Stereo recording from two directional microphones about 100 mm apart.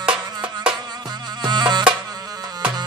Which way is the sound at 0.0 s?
10° right (ahead or behind).